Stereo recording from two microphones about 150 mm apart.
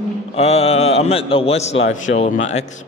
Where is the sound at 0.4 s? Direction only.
45° left (ahead or behind).